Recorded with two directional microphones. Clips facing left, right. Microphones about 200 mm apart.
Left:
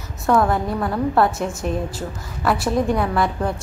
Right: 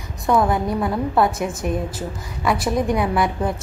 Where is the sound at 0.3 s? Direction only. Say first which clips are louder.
Even; 15° right (ahead or behind).